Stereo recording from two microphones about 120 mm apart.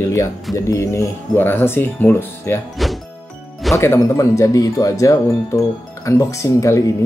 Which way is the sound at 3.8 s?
25° left (ahead or behind).